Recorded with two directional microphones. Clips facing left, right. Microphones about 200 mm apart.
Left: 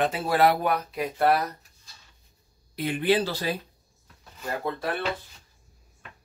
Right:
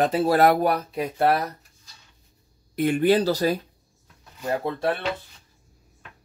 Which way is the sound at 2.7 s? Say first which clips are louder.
Right 5 dB; 45° right (ahead or behind).